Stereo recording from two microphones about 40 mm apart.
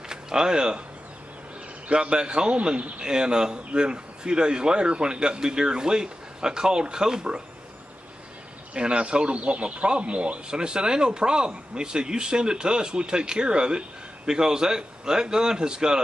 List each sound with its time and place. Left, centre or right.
0.1 s speech: centre
2.0 s speech: right
8.7 s speech: right